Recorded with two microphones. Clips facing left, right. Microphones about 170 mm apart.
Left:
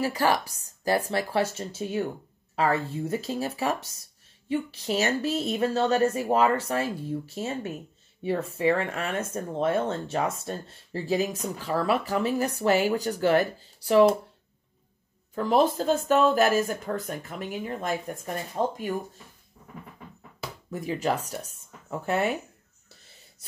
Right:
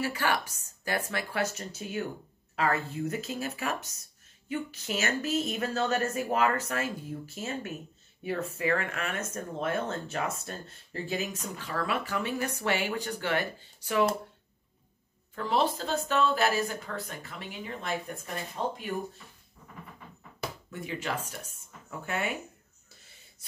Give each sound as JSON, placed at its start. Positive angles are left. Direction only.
{"t": 0.0, "sound": "speech", "side_deg": 35}
{"t": 15.3, "sound": "speech", "side_deg": 45}
{"t": 20.7, "sound": "speech", "side_deg": 40}